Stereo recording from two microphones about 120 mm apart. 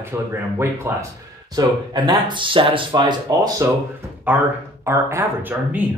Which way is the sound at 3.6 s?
20° right (ahead or behind).